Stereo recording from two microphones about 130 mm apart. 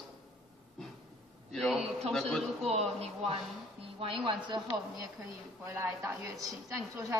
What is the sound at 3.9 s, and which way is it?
Speech, 40° right (ahead or behind).